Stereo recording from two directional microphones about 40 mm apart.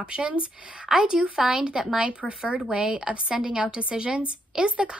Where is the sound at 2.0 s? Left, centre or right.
Right.